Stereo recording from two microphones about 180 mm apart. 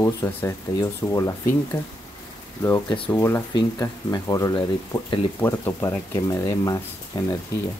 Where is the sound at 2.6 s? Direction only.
15° left (ahead or behind).